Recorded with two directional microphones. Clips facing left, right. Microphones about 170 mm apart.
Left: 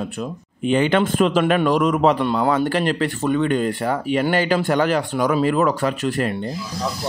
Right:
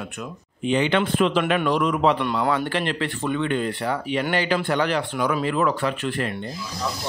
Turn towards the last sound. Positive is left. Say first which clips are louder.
# left 4 dB
turn(degrees=40)  # may be behind; listen again after turning